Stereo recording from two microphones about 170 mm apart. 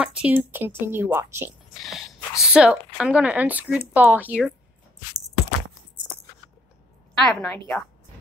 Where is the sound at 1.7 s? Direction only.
Centre (ahead or behind).